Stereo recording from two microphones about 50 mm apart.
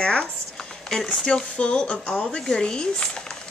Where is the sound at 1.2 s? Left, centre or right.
Left.